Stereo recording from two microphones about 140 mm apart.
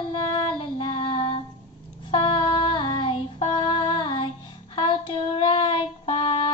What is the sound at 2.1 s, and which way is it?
Music, 40° left (ahead or behind).